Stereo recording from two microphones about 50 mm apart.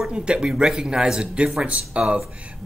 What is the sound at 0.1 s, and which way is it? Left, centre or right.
Speech, centre.